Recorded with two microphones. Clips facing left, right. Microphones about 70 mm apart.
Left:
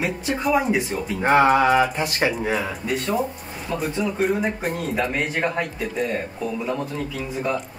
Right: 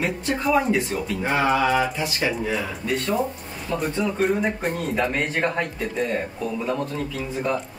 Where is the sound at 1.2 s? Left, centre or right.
Left.